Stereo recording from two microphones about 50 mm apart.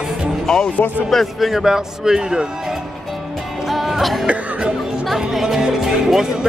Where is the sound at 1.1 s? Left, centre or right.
Centre.